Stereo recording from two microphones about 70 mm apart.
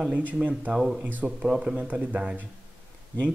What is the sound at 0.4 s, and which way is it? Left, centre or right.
A man's voice, centre.